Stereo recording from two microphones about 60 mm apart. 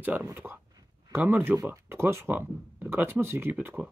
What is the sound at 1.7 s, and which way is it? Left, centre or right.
Speech, right.